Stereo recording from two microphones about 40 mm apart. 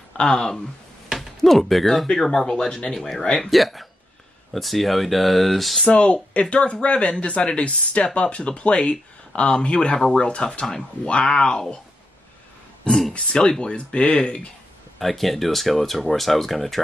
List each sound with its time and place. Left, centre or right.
0.2 s speech: centre
1.1 s music: centre
2.3 s speech: centre
3.4 s speech: centre
5.9 s speech: left
9.9 s speech: centre
13.4 s speech: centre
15.0 s speech: centre